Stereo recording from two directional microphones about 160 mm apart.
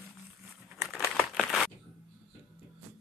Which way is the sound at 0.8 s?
Centre (ahead or behind).